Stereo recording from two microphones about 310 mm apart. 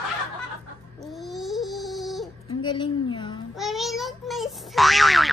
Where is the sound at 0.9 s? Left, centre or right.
Centre.